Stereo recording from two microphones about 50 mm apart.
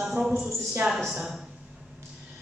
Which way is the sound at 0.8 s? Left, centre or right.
Centre.